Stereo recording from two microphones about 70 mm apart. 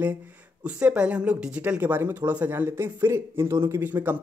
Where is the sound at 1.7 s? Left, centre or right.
Right.